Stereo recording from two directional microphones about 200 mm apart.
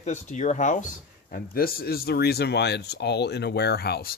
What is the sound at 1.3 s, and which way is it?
Speech, 50° left (ahead or behind).